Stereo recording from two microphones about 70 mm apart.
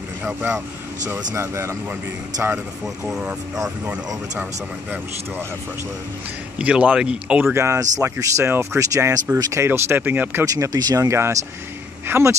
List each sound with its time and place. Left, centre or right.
0.2 s speech: right
1.3 s speech: right
3.1 s speech: centre
6.6 s speech: centre
7.5 s speech: right
9.7 s speech: right
10.4 s speech: right
11.1 s speech: right